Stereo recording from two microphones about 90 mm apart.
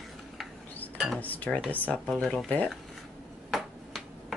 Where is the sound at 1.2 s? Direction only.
15° left (ahead or behind).